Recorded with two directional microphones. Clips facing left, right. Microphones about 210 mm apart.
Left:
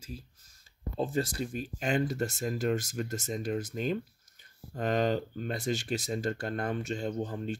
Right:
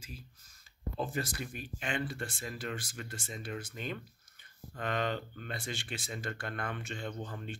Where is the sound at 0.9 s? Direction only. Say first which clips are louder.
Left 6 dB; 30° left (ahead or behind).